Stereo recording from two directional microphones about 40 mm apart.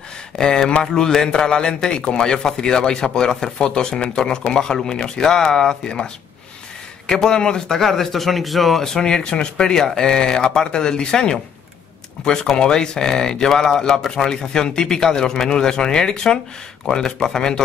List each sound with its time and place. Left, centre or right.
0.4 s speech: centre
1.2 s speech: left
7.2 s speech: centre